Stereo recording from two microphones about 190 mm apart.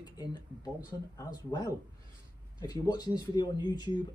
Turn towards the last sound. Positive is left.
turn(degrees=20)  # may be behind; listen again after turning